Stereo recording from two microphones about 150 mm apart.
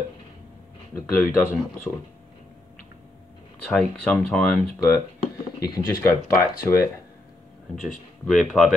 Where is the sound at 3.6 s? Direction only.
5° left (ahead or behind).